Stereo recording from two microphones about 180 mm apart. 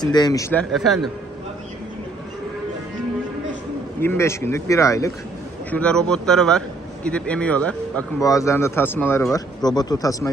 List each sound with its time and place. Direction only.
0.0 s speech: 20° left (ahead or behind)
0.7 s a man's voice: centre (ahead or behind)
4.0 s a man's voice: 15° left (ahead or behind)
5.7 s a man's voice: 5° left (ahead or behind)
8.2 s a man's voice: 20° left (ahead or behind)